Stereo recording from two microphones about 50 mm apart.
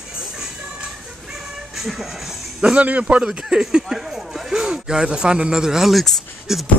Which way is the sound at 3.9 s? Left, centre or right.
Centre.